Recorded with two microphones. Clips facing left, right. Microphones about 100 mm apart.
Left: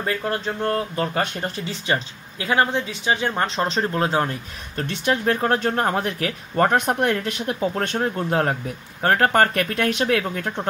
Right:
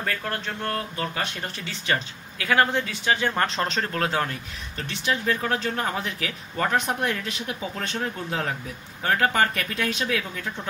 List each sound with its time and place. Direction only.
0.0 s speech: 20° left (ahead or behind); by 1.5 s 40° left (ahead or behind)
1.7 s speech: 25° left (ahead or behind)
4.7 s speech: 50° left (ahead or behind)